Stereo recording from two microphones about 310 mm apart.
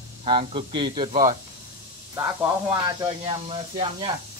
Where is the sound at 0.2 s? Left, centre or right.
Centre.